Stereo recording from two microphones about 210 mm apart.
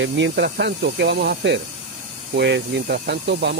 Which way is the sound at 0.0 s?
60° right (ahead or behind).